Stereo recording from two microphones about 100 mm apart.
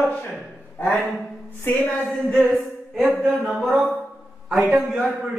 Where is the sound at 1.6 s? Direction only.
20° left (ahead or behind).